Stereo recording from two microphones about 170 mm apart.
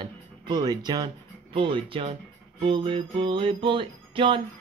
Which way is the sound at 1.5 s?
30° right (ahead or behind).